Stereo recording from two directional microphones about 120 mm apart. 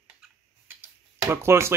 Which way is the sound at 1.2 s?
20° right (ahead or behind).